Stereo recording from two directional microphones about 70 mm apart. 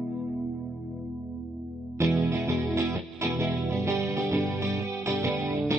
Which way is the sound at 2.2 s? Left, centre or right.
Right.